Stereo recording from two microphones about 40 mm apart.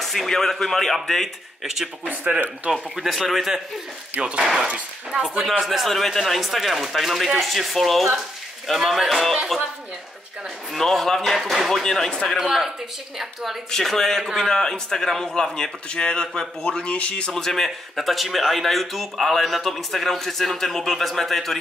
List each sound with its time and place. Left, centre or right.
0.0 s speech: centre
2.3 s speech: right
2.7 s speech: centre
5.1 s speech: centre
5.6 s speech: centre
10.7 s speech: centre
11.8 s speech: centre
12.4 s speech: centre
13.7 s speech: centre; by 17.3 s left
17.3 s speech: centre
17.6 s speech: centre